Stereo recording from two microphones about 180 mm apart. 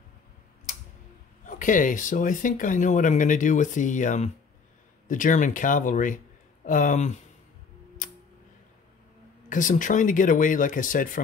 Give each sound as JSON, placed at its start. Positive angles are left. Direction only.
{"t": 1.4, "sound": "speech", "side_deg": 45}
{"t": 8.0, "sound": "tick-tock", "side_deg": 45}
{"t": 9.5, "sound": "speech", "side_deg": 45}